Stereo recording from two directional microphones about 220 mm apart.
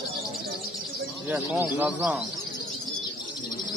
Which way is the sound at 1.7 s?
5° right (ahead or behind).